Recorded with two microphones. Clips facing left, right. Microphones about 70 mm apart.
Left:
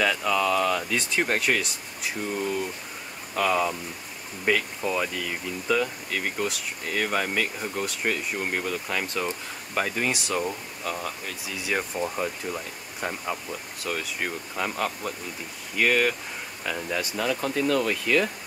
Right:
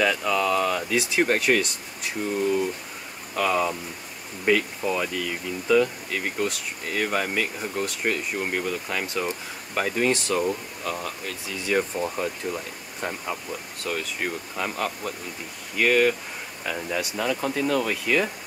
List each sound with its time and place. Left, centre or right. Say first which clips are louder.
0.0 s speech: right 1 dB; centre